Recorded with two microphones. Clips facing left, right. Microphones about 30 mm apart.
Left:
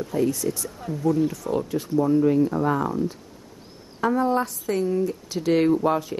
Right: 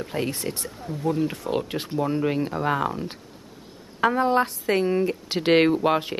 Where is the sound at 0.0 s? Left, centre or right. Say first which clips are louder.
Left 4 dB; right.